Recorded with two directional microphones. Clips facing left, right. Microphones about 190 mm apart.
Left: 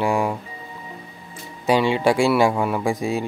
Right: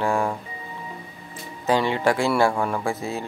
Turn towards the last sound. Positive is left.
turn(degrees=15)  # may be behind; listen again after turning